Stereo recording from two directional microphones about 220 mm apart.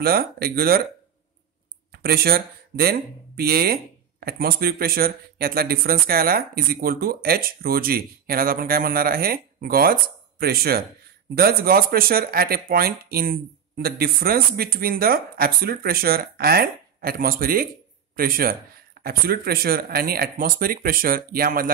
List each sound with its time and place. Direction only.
0.0 s speech: 45° right (ahead or behind)
1.9 s speech: 45° right (ahead or behind)